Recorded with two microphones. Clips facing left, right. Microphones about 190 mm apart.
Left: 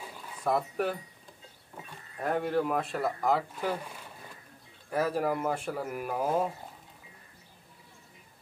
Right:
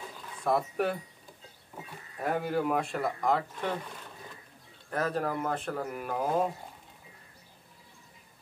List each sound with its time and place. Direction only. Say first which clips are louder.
0.2 s speech: right 1 dB; 5° left (ahead or behind)